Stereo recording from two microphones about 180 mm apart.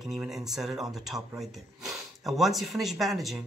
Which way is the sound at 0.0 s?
Centre (ahead or behind).